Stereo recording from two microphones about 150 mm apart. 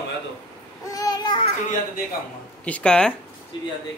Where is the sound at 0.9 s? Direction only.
25° left (ahead or behind).